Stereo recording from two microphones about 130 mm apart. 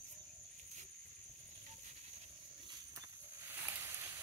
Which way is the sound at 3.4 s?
20° right (ahead or behind).